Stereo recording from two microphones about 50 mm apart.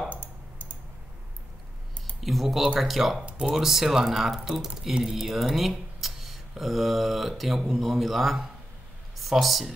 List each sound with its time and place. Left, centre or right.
0.1 s typing: left
2.1 s speech: centre
3.3 s speech: centre
3.5 s speech: centre